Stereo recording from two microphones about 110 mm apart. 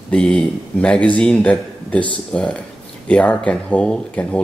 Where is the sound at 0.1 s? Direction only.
10° left (ahead or behind).